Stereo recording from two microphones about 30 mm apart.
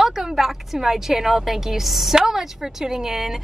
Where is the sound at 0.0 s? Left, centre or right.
Centre.